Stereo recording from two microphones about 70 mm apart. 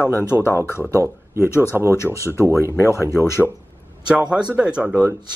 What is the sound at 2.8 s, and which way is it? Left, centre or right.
Speech, left.